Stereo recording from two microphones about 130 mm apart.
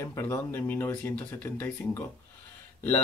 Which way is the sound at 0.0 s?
20° left (ahead or behind).